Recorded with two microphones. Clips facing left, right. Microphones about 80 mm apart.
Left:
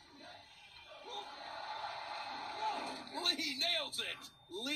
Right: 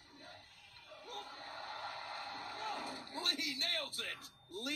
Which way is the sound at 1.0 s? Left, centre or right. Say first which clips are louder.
Left 2 dB; right.